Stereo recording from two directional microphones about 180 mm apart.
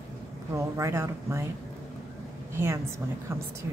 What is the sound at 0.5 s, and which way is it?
Speech, 15° right (ahead or behind).